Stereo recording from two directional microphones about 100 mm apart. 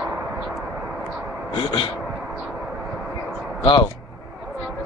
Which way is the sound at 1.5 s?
60° left (ahead or behind).